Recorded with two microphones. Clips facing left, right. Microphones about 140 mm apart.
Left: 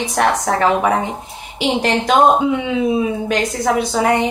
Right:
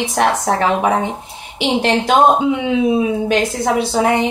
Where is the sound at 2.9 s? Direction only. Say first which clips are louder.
Right 2 dB; 25° right (ahead or behind).